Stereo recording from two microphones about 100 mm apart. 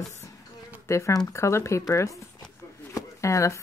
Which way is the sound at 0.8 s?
30° left (ahead or behind).